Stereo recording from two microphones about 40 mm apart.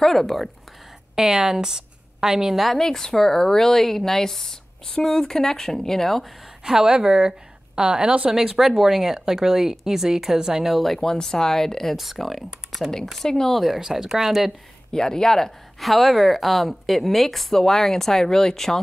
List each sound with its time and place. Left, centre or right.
0.0 s speech: centre
1.1 s a woman's voice: centre
2.6 s speech: centre
6.6 s a woman's voice: centre
8.3 s speech: centre
10.7 s speech: centre
13.2 s speech: centre
13.7 s speech: centre
14.9 s speech: centre